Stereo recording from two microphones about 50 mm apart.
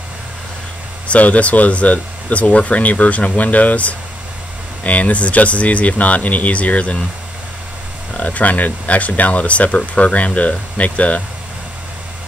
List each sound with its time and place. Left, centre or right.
1.0 s speech: left
8.1 s speech: left